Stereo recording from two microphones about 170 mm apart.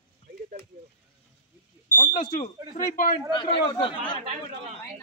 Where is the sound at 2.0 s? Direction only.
50° left (ahead or behind).